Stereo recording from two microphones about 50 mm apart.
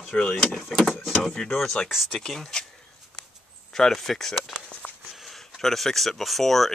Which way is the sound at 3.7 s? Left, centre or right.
Centre.